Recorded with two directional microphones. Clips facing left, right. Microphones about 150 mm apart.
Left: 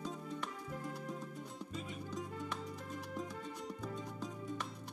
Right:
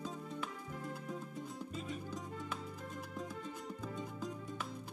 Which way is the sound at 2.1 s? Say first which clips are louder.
Left 1 dB; centre (ahead or behind).